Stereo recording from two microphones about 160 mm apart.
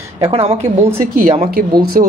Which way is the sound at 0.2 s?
40° right (ahead or behind).